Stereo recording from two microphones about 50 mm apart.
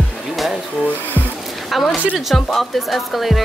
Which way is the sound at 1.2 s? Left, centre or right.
Right.